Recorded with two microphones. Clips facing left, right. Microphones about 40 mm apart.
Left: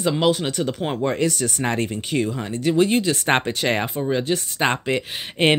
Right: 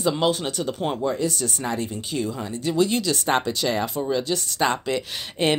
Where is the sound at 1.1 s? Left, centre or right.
Left.